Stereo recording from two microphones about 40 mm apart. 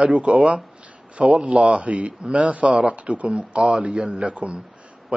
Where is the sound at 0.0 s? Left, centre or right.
Right.